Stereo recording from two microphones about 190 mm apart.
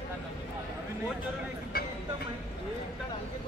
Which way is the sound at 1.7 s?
50° left (ahead or behind).